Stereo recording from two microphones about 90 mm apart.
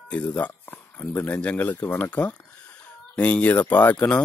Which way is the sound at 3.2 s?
15° left (ahead or behind).